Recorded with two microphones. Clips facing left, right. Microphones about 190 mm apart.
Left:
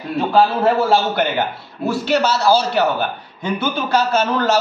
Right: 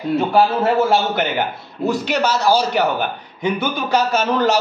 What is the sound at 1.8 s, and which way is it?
A man's voice, 15° right (ahead or behind).